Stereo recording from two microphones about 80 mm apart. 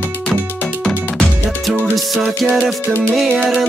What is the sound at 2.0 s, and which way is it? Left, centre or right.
Music, centre.